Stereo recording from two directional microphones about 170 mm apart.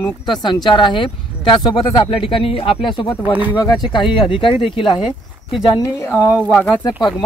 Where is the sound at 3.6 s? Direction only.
25° left (ahead or behind).